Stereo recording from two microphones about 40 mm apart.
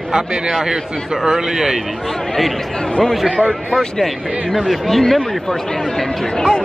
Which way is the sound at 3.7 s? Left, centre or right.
Centre.